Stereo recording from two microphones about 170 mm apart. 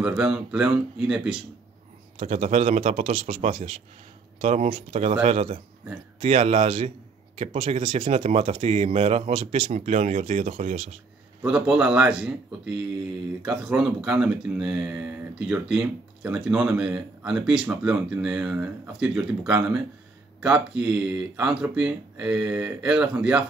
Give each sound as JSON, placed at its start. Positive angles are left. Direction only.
{"t": 0.0, "sound": "speech", "side_deg": -5}
{"t": 2.1, "sound": "speech", "side_deg": -40}
{"t": 8.1, "sound": "speech", "side_deg": -40}
{"t": 11.4, "sound": "speech", "side_deg": -5}